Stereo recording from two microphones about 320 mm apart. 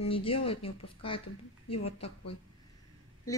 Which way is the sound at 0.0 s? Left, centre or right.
Centre.